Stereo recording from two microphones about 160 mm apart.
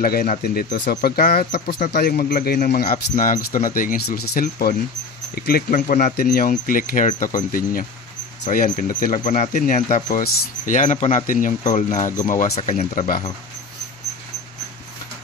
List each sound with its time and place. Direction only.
0.0 s speech: 65° left (ahead or behind)